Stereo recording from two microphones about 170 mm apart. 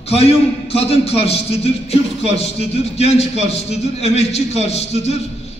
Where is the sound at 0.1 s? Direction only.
35° left (ahead or behind).